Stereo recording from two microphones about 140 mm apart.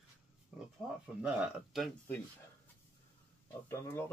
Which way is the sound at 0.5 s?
5° right (ahead or behind).